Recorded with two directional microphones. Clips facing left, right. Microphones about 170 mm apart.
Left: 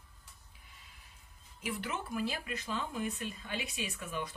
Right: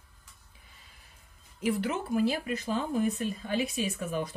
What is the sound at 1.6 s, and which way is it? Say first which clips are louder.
Speech: right 9 dB; 35° right (ahead or behind).